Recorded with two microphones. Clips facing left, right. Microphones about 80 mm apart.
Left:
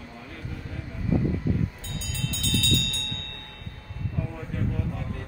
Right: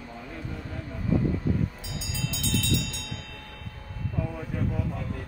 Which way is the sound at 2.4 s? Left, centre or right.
Centre.